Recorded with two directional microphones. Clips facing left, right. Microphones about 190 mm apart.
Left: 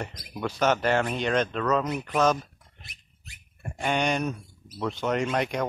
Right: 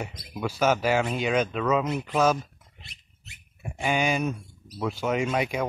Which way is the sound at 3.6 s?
5° right (ahead or behind).